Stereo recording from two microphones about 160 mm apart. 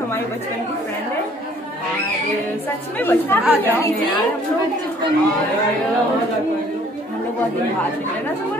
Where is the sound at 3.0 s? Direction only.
15° left (ahead or behind).